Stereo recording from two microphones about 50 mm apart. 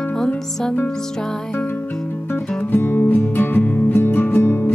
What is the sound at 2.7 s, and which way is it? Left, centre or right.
Music, left.